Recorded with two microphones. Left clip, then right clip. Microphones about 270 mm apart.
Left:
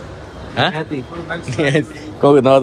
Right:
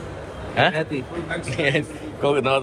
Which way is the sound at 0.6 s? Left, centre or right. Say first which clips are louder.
Left 2 dB; centre.